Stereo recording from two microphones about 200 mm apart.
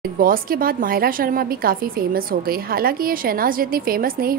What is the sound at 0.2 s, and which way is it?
A woman's voice, 45° right (ahead or behind).